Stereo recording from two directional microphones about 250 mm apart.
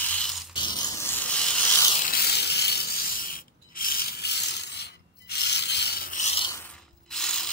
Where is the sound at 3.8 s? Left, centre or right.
Left.